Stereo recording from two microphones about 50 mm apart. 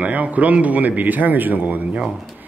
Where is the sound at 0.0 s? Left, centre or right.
Right.